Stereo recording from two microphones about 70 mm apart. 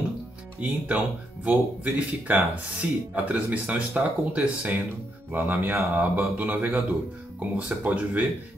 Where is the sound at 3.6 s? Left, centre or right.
Centre.